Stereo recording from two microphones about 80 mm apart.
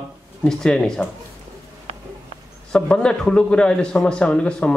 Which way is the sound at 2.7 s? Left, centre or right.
Centre.